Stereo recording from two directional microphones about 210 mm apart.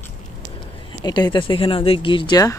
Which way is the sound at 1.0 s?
20° left (ahead or behind).